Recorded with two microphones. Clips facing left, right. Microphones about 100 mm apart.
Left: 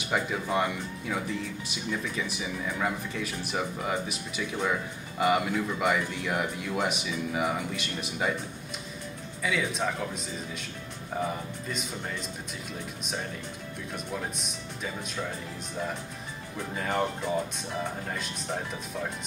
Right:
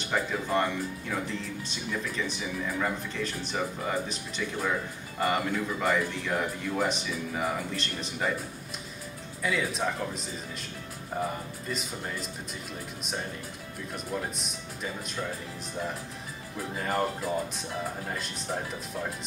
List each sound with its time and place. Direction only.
0.0 s speech: 5° left (ahead or behind)
9.4 s speech: centre (ahead or behind)
11.1 s speech: centre (ahead or behind)
13.9 s speech: centre (ahead or behind)
16.5 s speech: centre (ahead or behind)